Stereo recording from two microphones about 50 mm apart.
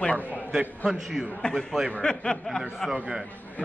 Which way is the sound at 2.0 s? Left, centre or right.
Centre.